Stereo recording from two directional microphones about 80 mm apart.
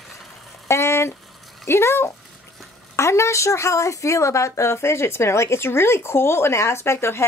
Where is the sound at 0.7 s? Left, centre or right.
Left.